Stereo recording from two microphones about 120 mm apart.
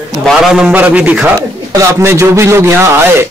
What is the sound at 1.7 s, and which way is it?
A man's voice, 25° right (ahead or behind).